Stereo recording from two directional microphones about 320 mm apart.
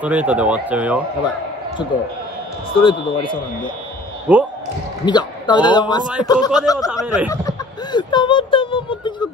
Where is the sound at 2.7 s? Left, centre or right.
Centre.